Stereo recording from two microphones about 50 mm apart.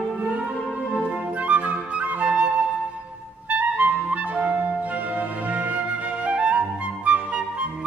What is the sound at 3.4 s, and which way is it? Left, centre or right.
Clarinet, right.